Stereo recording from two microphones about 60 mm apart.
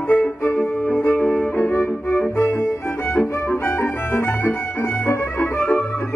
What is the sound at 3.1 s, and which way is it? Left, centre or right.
Music, left.